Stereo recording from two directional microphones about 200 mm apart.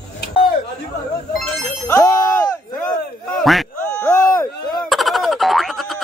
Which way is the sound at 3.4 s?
Centre (ahead or behind).